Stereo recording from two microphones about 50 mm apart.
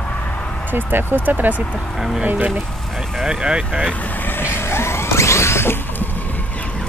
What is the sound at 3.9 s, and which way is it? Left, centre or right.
Vehicle, left.